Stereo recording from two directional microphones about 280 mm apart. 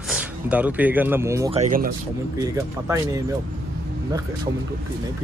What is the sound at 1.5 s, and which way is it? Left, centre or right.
Speech, right.